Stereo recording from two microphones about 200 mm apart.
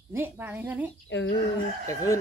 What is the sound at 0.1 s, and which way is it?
Speech, 10° right (ahead or behind).